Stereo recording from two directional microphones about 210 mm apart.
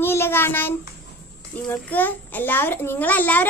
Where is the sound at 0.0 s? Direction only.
10° left (ahead or behind).